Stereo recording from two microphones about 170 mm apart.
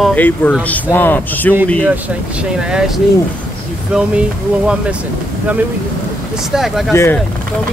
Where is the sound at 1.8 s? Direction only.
5° right (ahead or behind).